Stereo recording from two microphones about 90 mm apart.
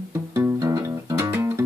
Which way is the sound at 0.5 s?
40° right (ahead or behind).